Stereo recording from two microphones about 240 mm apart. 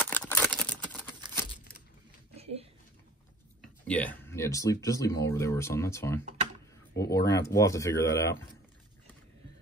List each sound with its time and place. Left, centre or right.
0.0 s crumpling: centre
2.3 s a sound: right
3.8 s speech: centre